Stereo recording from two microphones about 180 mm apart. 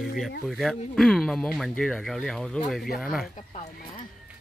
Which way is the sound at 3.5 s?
40° left (ahead or behind).